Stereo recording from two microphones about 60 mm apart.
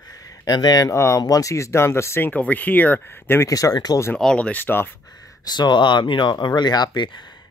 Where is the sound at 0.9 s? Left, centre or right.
Left.